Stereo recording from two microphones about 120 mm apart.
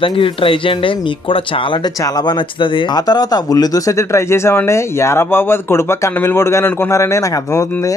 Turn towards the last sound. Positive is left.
turn(degrees=25)  # may be behind; listen again after turning